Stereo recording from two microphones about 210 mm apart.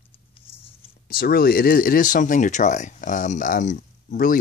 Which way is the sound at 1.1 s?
45° left (ahead or behind).